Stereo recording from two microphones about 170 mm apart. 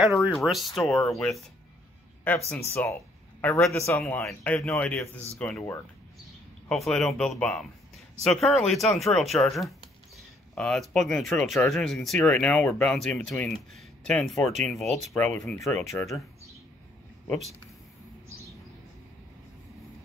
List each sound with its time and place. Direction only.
0.5 s speech: centre (ahead or behind)